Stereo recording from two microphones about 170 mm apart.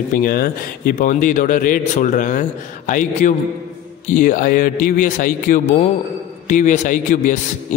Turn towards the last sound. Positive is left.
turn(degrees=50)  # may be behind; listen again after turning